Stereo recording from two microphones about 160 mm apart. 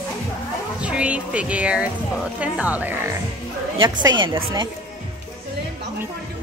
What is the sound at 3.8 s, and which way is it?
Speech, 30° right (ahead or behind).